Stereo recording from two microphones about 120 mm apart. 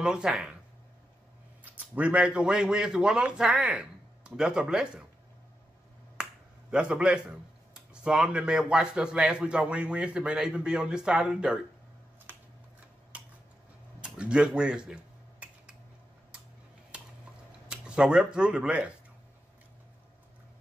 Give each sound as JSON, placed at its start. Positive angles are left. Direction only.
{"t": 0.0, "sound": "speech", "side_deg": -5}
{"t": 1.6, "sound": "a man's voice", "side_deg": -10}
{"t": 6.2, "sound": "finger snapping", "side_deg": -5}
{"t": 6.7, "sound": "speech", "side_deg": -10}
{"t": 12.3, "sound": "a sound", "side_deg": -15}
{"t": 14.0, "sound": "speech", "side_deg": -10}
{"t": 17.6, "sound": "speech", "side_deg": -5}